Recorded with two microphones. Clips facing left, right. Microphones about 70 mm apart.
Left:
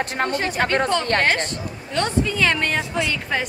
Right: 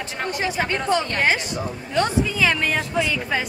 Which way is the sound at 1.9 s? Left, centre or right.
Centre.